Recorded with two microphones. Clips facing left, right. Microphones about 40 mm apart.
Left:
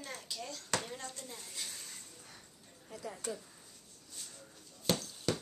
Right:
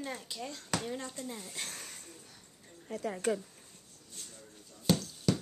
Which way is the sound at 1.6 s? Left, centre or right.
Right.